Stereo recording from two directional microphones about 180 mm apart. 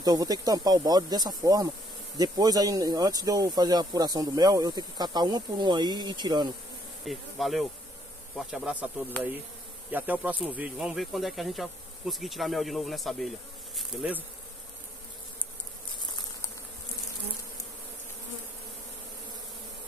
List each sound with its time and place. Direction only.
0.0 s speech: 20° right (ahead or behind)
7.1 s speech: centre (ahead or behind)
13.7 s bee: 10° right (ahead or behind)